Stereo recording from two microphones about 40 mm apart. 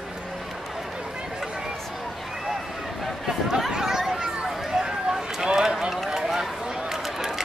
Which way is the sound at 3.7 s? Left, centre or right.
Centre.